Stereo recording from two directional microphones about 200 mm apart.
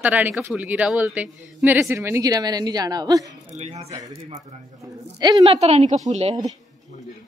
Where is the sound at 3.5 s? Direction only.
35° right (ahead or behind).